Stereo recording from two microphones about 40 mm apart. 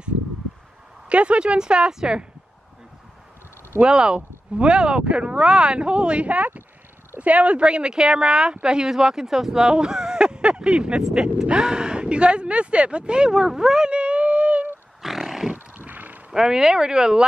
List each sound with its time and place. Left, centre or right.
1.0 s speech: right
3.8 s speech: right
15.0 s wild animals: centre
15.5 s wild animals: right
16.3 s speech: centre